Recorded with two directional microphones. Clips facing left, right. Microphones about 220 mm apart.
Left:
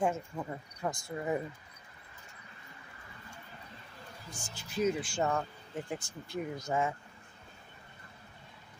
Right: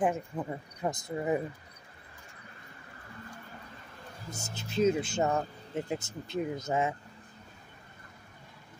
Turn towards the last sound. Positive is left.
turn(degrees=-20)  # may be behind; listen again after turning